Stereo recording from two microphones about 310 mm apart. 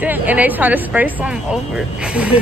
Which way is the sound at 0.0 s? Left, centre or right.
Centre.